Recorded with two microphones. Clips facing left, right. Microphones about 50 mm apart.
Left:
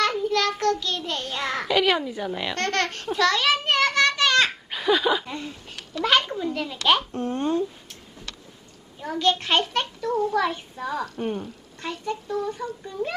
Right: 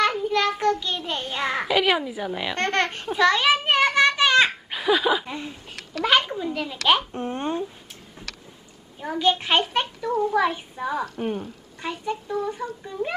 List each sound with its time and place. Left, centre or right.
0.0 s child singing: centre
6.0 s a child's voice: centre
7.1 s speech: right
9.0 s a child's voice: centre